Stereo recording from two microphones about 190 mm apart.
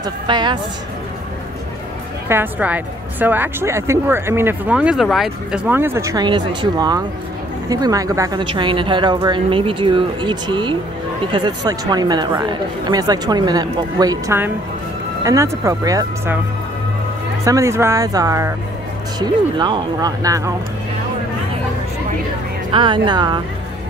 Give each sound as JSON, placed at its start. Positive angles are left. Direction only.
{"t": 0.0, "sound": "speech", "side_deg": -25}
{"t": 2.2, "sound": "a woman's voice", "side_deg": -10}
{"t": 17.5, "sound": "a woman's voice", "side_deg": -15}
{"t": 22.7, "sound": "speech", "side_deg": -25}